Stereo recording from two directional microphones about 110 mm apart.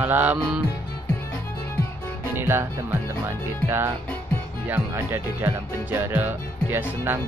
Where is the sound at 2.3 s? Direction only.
20° right (ahead or behind).